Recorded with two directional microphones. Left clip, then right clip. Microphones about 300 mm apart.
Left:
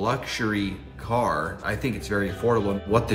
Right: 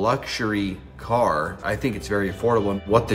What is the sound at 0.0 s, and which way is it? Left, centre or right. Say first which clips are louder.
Speech: right 3 dB; centre.